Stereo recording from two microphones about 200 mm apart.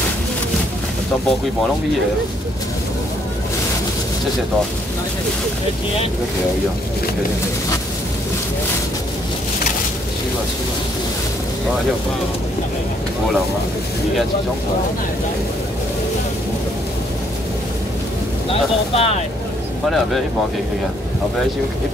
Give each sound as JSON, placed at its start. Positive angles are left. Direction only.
{"t": 18.5, "sound": "speech", "side_deg": 30}